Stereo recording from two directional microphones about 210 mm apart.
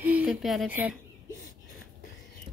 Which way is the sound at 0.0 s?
5° right (ahead or behind).